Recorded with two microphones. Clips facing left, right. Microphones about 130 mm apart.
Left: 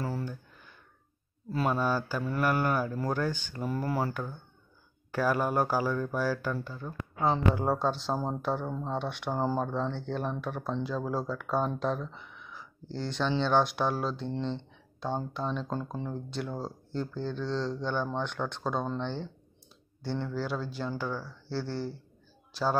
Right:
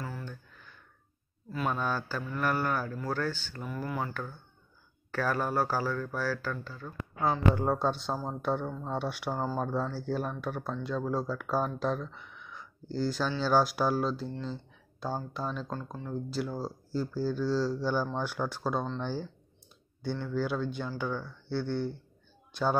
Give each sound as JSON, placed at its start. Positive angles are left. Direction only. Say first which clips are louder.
{"t": 0.2, "sound": "a sound", "louder": "left 5 dB", "side_deg": 10}
{"t": 1.5, "sound": "speech", "louder": "left 3 dB", "side_deg": 30}
{"t": 1.8, "sound": "speech", "louder": "left 3 dB", "side_deg": 10}
{"t": 3.6, "sound": "speech", "louder": "left 4 dB", "side_deg": 35}
{"t": 4.1, "sound": "speech", "louder": "left 2 dB", "side_deg": 15}
{"t": 7.5, "sound": "speech", "louder": "even", "side_deg": 5}
{"t": 9.3, "sound": "speech", "louder": "left 4 dB", "side_deg": 15}
{"t": 9.6, "sound": "speech", "louder": "left 1 dB", "side_deg": -5}
{"t": 14.4, "sound": "a sound", "louder": "left 4 dB", "side_deg": -5}
{"t": 15.3, "sound": "speech", "louder": "left 3 dB", "side_deg": 0}